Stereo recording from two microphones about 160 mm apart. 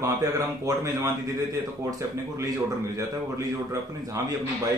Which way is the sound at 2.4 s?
20° right (ahead or behind).